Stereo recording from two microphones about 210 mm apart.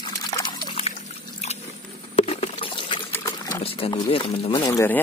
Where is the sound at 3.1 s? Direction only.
15° left (ahead or behind).